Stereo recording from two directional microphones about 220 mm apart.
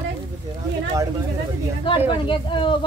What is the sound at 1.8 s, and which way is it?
Speech, 20° left (ahead or behind).